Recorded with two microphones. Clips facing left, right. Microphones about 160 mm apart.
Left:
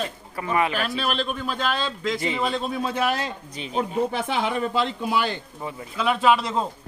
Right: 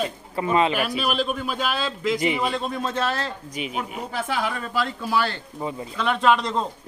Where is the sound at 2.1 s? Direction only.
15° right (ahead or behind).